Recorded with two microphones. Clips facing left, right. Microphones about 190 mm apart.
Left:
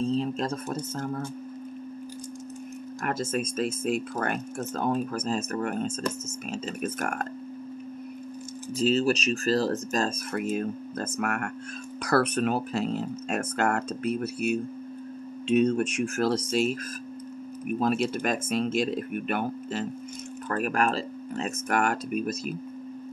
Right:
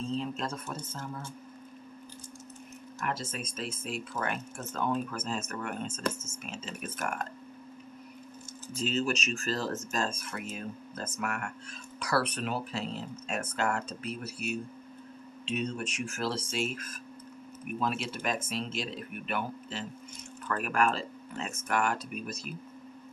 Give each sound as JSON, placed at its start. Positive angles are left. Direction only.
{"t": 0.0, "sound": "speech", "side_deg": 40}
{"t": 0.9, "sound": "a man's voice", "side_deg": 55}
{"t": 3.1, "sound": "speech", "side_deg": 45}
{"t": 7.0, "sound": "speech", "side_deg": 55}
{"t": 8.7, "sound": "speech", "side_deg": 35}
{"t": 10.5, "sound": "speech", "side_deg": 50}
{"t": 17.7, "sound": "speech", "side_deg": 40}
{"t": 20.4, "sound": "speech", "side_deg": 40}